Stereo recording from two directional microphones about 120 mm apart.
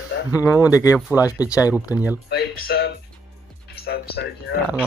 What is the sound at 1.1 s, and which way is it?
Speech, 15° right (ahead or behind).